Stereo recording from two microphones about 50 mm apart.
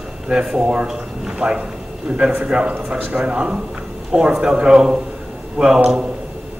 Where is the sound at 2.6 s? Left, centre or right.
Right.